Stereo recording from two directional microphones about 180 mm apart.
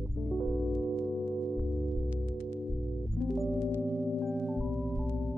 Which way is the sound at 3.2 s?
Centre (ahead or behind).